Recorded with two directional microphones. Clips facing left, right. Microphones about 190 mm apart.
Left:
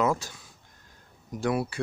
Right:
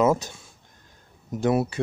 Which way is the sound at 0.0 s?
20° right (ahead or behind).